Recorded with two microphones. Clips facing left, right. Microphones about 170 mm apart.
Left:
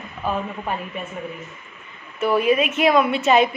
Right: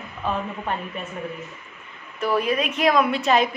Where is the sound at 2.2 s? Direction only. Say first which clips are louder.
Left 4 dB; 5° left (ahead or behind).